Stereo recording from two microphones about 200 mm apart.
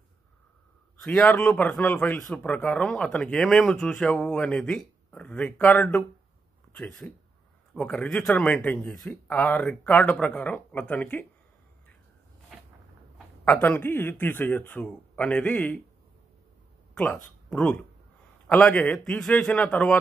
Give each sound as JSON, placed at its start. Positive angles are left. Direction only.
{"t": 1.0, "sound": "speech", "side_deg": 5}
{"t": 13.5, "sound": "speech", "side_deg": 10}
{"t": 16.9, "sound": "speech", "side_deg": 5}